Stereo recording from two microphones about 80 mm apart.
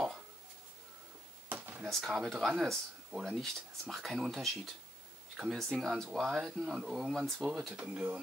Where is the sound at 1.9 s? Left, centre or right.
Centre.